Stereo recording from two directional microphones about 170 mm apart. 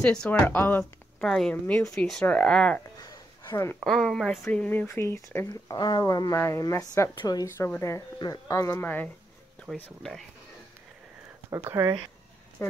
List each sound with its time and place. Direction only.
0.0 s speech: 5° left (ahead or behind)
3.0 s a sound: 20° left (ahead or behind)
3.8 s speech: centre (ahead or behind)
11.5 s speech: 15° right (ahead or behind)